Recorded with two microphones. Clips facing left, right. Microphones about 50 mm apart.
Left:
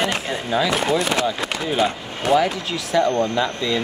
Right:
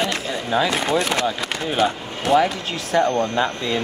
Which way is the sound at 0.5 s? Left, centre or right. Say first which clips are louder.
Even; right.